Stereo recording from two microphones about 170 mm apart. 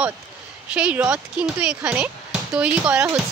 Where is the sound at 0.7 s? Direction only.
5° right (ahead or behind).